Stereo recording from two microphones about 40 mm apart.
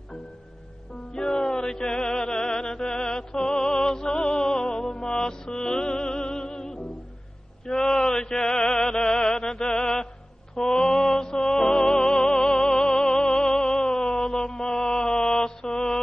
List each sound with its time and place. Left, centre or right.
1.1 s chant: centre
9.5 s mantra: centre
10.5 s music: centre